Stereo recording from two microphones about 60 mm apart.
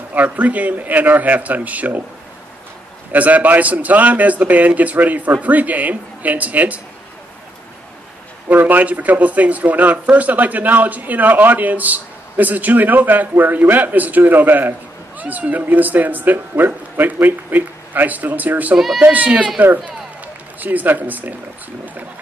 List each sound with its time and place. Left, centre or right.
0.1 s speech: right
3.1 s speech: right
8.5 s a man's voice: right
20.5 s a man's voice: right